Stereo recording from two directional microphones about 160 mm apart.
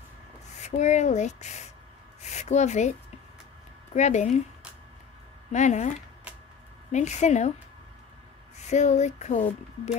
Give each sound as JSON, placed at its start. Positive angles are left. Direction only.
{"t": 0.6, "sound": "speech", "side_deg": 45}
{"t": 2.2, "sound": "a sound", "side_deg": 45}
{"t": 3.9, "sound": "speech", "side_deg": 45}
{"t": 5.5, "sound": "speech", "side_deg": 45}
{"t": 8.5, "sound": "speech", "side_deg": 45}